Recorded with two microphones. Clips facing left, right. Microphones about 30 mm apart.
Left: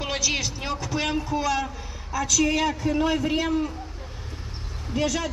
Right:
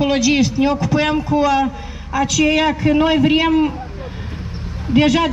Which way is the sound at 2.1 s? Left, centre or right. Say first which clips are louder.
Right 8 dB; right.